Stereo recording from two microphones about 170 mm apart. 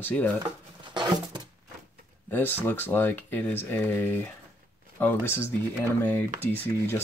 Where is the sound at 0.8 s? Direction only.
25° right (ahead or behind).